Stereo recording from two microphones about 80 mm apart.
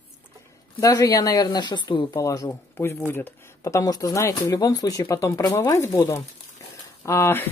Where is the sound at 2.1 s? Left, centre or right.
Left.